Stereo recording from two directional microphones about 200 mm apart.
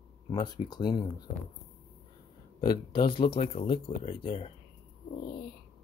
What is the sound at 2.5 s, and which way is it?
Speech, 25° left (ahead or behind).